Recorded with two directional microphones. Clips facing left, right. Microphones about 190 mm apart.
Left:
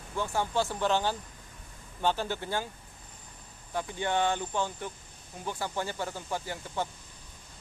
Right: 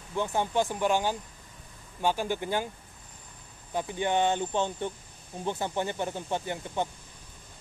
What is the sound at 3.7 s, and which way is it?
Speech, 15° right (ahead or behind).